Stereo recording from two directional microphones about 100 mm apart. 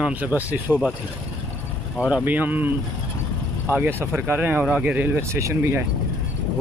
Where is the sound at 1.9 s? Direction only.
10° right (ahead or behind).